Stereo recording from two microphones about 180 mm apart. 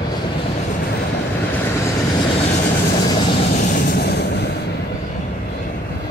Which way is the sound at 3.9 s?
65° left (ahead or behind).